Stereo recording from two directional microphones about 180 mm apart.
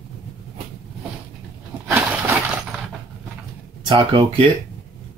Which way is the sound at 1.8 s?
10° right (ahead or behind).